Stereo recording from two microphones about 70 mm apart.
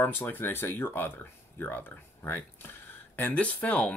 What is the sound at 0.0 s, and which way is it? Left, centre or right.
Speech, left.